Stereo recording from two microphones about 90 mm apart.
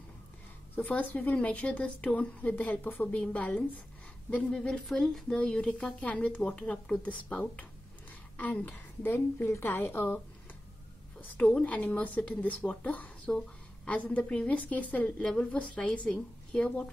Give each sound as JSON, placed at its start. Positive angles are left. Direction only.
{"t": 0.7, "sound": "a woman's voice", "side_deg": 15}
{"t": 11.3, "sound": "a woman's voice", "side_deg": 15}